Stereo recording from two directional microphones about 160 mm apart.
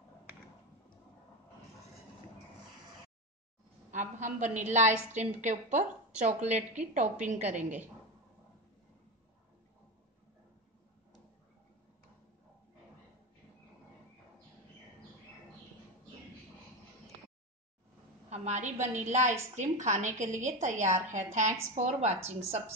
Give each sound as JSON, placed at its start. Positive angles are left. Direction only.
{"t": 3.9, "sound": "a woman's voice", "side_deg": -50}
{"t": 18.3, "sound": "a woman's voice", "side_deg": -45}